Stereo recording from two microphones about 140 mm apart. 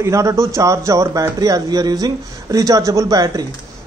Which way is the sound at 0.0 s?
20° right (ahead or behind).